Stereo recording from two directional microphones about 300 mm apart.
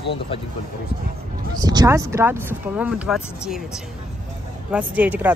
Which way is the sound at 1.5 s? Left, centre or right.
Centre.